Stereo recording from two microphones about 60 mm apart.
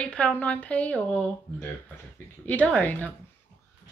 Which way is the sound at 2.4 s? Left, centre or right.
Left.